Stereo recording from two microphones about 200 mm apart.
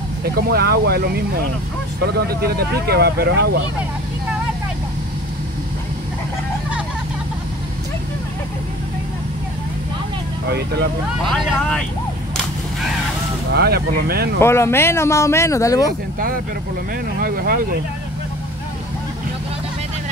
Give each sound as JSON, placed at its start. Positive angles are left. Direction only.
{"t": 0.2, "sound": "speech", "side_deg": -50}
{"t": 10.5, "sound": "speech", "side_deg": -55}
{"t": 11.2, "sound": "speech", "side_deg": 0}
{"t": 13.6, "sound": "speech", "side_deg": -50}
{"t": 14.4, "sound": "speech", "side_deg": 10}